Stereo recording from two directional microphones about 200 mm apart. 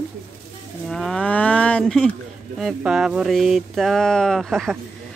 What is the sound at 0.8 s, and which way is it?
Cattle, centre (ahead or behind).